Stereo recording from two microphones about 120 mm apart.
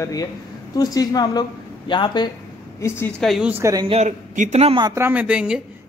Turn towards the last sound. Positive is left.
turn(degrees=-10)  # may be behind; listen again after turning